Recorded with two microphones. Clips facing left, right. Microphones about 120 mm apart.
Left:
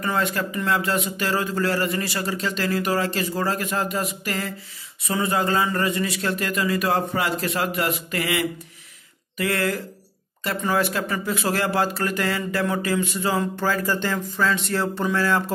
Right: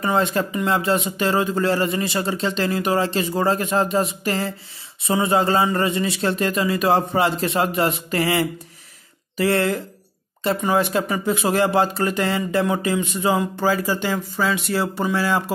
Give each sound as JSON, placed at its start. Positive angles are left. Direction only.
{"t": 0.0, "sound": "speech", "side_deg": -25}